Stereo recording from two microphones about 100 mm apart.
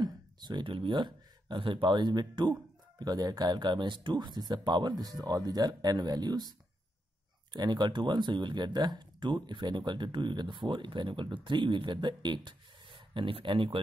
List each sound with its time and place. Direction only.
0.0 s speech: 50° right (ahead or behind)
7.5 s speech: 45° right (ahead or behind)